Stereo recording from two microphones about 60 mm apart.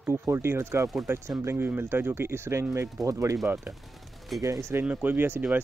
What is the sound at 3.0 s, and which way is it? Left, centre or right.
Speech, right.